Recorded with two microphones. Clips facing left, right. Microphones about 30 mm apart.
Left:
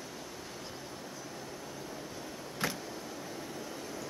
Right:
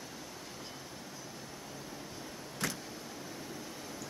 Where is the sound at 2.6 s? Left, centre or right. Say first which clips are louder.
Left 2 dB; left.